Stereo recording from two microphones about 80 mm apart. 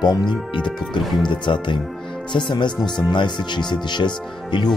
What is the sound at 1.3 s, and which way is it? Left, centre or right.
Speech, left.